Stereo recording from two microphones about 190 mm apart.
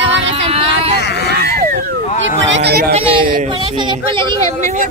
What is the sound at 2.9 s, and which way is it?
Speech, 30° right (ahead or behind).